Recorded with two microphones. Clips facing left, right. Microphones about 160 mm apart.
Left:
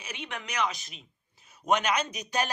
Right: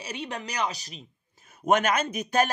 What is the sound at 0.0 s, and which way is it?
A man's voice, 35° right (ahead or behind).